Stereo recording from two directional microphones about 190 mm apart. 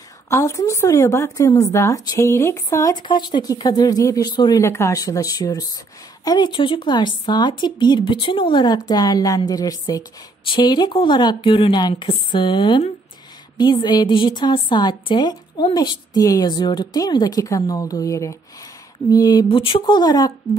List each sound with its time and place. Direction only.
0.3 s a woman's voice: 15° left (ahead or behind)